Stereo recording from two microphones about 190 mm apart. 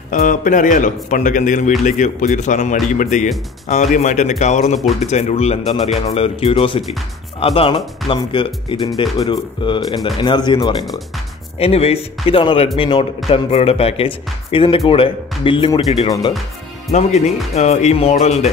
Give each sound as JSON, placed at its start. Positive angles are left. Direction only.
{"t": 0.1, "sound": "speech", "side_deg": 45}
{"t": 17.6, "sound": "speech", "side_deg": 35}